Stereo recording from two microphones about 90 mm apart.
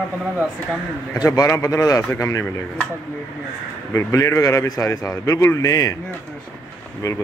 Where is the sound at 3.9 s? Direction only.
35° left (ahead or behind).